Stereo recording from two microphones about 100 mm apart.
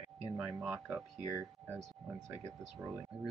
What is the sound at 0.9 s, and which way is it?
Speech, 25° right (ahead or behind).